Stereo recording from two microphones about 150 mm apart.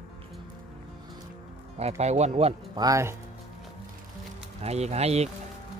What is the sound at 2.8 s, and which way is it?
Speech, 20° right (ahead or behind).